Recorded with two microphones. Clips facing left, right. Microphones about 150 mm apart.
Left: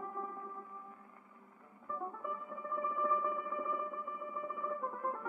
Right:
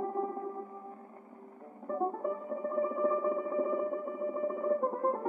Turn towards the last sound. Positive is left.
turn(degrees=-40)  # may be behind; listen again after turning